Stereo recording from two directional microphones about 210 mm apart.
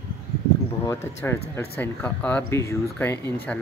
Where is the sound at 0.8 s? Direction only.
10° left (ahead or behind).